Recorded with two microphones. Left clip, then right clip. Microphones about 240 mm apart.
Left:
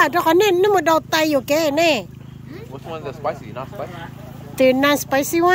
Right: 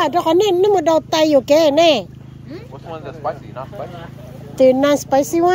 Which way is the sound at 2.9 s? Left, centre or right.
Left.